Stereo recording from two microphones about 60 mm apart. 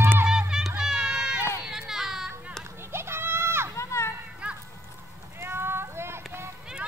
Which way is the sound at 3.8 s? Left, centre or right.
Left.